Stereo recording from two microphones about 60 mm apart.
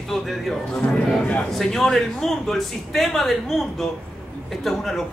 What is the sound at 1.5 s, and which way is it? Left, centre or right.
A woman's voice, centre.